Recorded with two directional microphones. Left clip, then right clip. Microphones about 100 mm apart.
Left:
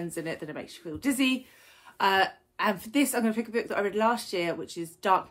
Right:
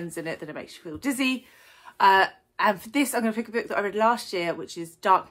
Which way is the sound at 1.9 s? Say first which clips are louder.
Right 6 dB; 30° right (ahead or behind).